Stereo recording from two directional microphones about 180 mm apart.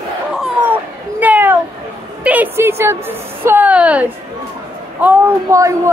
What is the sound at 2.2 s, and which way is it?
A woman's voice, 10° right (ahead or behind).